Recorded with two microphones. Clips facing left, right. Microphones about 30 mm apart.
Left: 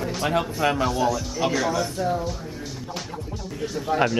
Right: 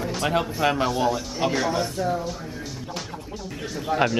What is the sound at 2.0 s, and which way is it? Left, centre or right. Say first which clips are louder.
Speech: left 1 dB; centre.